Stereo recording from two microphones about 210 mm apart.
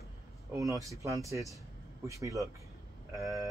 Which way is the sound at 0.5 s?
15° right (ahead or behind).